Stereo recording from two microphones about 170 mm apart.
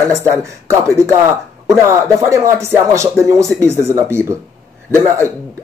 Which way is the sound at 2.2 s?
15° right (ahead or behind).